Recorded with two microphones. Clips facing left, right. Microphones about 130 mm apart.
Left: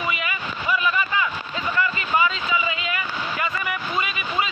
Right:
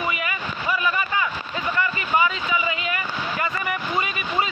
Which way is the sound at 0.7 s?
25° right (ahead or behind).